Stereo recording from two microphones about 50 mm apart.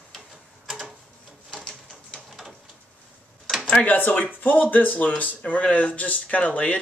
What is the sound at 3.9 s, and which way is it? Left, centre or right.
Speech, left.